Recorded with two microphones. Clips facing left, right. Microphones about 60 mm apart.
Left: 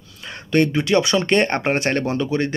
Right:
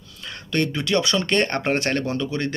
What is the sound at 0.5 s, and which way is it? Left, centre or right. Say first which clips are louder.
Speech: left 5 dB; centre.